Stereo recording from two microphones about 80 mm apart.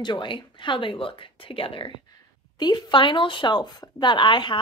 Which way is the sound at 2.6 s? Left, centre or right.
Left.